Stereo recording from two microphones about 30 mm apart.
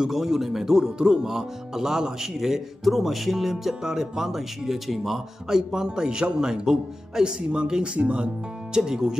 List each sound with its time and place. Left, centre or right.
0.0 s speech: centre
0.8 s speech: right
2.8 s speech: centre
5.5 s speech: centre
7.8 s speech: right
8.7 s speech: right